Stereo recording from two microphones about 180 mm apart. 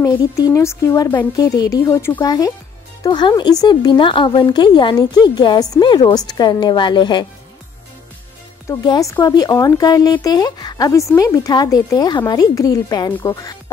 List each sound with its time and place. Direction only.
0.0 s speech: 15° left (ahead or behind)
8.6 s speech: 20° left (ahead or behind)